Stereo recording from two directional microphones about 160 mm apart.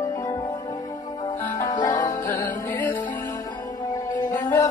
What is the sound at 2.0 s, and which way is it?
Music, 20° left (ahead or behind).